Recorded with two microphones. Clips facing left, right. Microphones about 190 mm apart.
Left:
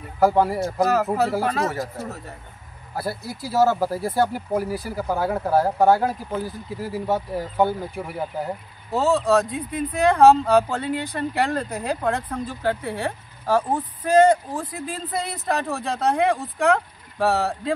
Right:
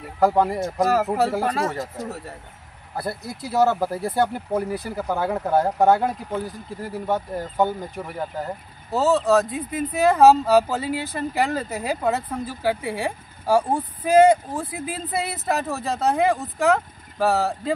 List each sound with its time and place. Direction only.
0.2 s speech: 5° left (ahead or behind)
0.8 s speech: 10° right (ahead or behind)
1.3 s speech: centre (ahead or behind)
1.8 s speech: 15° right (ahead or behind)
3.5 s speech: 5° left (ahead or behind)
8.9 s speech: centre (ahead or behind)